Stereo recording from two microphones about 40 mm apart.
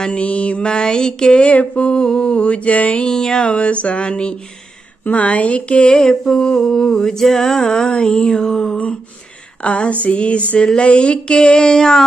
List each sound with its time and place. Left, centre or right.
0.0 s speech: left
0.6 s mantra: left
1.4 s speech: left
1.9 s mantra: left
3.1 s mantra: centre
3.5 s speech: left
5.9 s a sound: centre
7.9 s mantra: left
9.6 s a sound: left
10.0 s speech: left
10.8 s mantra: left